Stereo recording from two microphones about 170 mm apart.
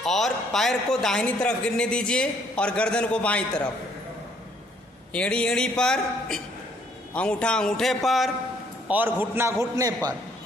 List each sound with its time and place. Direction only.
0.0 s a man's voice: centre (ahead or behind)
5.1 s a man's voice: 5° left (ahead or behind)
8.8 s a man's voice: 10° right (ahead or behind)